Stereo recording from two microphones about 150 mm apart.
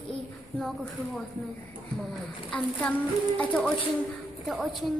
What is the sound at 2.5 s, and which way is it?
A woman's voice, 10° left (ahead or behind).